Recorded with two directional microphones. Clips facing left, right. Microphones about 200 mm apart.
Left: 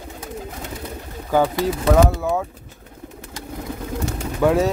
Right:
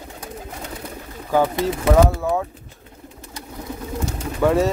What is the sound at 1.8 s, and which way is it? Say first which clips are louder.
Speech: even; 5° right (ahead or behind).